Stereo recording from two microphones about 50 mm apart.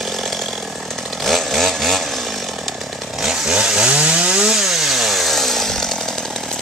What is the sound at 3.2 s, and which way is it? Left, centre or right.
Chainsaw, centre.